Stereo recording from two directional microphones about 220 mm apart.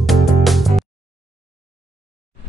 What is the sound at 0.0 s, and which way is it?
Music, centre (ahead or behind).